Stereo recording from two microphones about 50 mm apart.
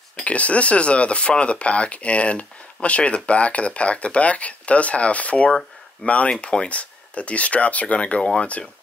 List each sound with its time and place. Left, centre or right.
0.2 s speech: left
8.2 s speech: centre